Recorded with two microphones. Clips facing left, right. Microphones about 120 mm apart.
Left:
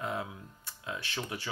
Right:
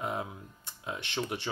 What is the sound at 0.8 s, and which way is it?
Speech, 25° right (ahead or behind).